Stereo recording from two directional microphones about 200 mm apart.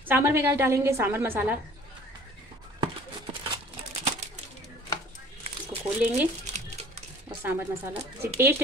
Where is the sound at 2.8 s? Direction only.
25° right (ahead or behind).